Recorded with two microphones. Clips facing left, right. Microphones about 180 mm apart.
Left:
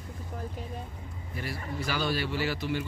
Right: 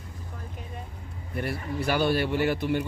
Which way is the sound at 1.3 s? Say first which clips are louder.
Right 6 dB; 60° right (ahead or behind).